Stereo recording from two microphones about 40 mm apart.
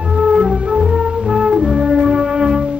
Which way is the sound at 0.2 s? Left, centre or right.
Right.